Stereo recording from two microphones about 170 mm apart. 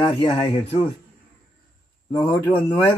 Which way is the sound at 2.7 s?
20° left (ahead or behind).